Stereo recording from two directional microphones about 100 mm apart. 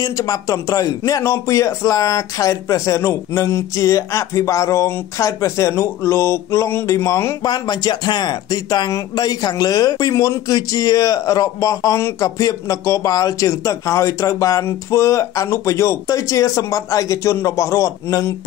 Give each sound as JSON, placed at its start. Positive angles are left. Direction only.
{"t": 0.0, "sound": "a man's voice", "side_deg": 35}
{"t": 7.4, "sound": "a man's voice", "side_deg": 45}